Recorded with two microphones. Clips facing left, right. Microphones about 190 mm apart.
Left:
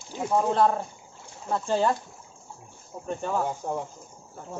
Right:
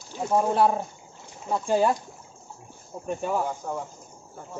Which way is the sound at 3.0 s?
10° right (ahead or behind).